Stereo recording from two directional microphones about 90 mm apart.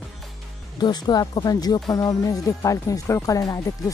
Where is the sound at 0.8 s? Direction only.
50° left (ahead or behind).